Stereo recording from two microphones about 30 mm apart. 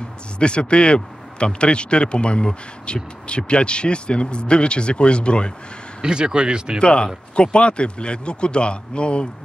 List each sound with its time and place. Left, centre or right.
0.4 s speech: left
6.0 s speech: right
6.8 s speech: left